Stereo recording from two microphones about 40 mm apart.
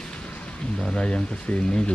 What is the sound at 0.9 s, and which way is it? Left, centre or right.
Speech, left.